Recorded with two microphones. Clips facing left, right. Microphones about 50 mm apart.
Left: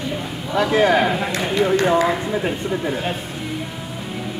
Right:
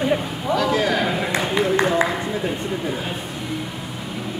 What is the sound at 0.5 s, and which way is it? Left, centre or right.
Speech, left.